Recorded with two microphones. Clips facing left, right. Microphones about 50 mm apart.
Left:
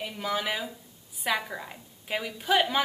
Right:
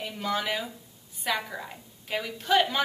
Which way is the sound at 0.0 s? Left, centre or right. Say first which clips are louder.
Even; centre.